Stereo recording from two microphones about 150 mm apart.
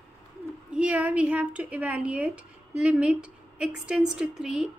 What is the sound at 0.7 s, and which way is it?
A woman's voice, 10° right (ahead or behind).